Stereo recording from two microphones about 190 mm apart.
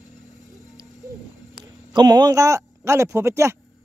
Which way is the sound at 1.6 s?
20° right (ahead or behind).